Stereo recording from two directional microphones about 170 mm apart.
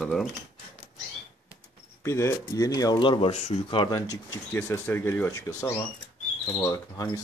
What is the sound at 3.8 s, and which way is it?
Speech, 20° left (ahead or behind).